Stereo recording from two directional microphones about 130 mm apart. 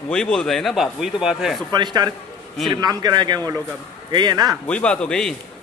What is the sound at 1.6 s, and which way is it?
Speech, 35° right (ahead or behind).